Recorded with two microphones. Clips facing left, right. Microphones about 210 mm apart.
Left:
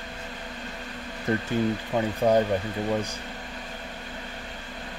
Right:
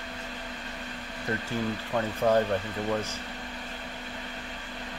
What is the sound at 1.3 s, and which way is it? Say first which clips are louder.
Speech: left 6 dB; 25° left (ahead or behind).